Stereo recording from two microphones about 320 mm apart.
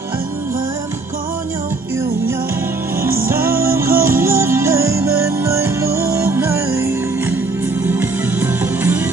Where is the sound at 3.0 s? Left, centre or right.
Right.